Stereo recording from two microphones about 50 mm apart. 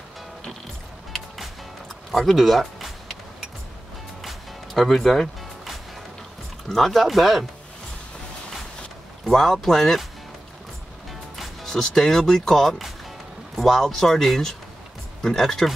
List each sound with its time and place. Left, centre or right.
2.0 s a sound: centre
4.2 s music: centre
6.7 s speech: centre
9.2 s speech: centre
11.3 s speech: centre